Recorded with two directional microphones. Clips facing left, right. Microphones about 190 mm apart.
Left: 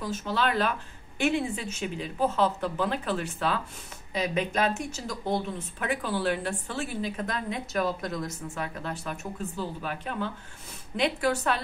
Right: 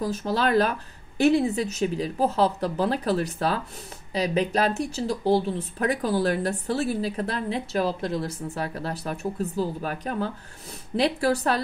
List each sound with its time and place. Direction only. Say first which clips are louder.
0.0 s speech: right 4 dB; 35° right (ahead or behind)